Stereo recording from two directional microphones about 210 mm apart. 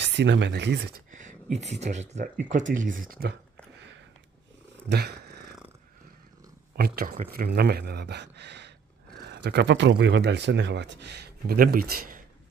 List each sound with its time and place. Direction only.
0.0 s speech: 55° right (ahead or behind)
4.8 s purr: 50° right (ahead or behind)
6.7 s speech: 45° right (ahead or behind)